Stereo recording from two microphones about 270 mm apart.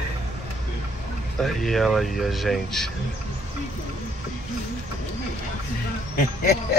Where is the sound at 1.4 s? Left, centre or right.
Centre.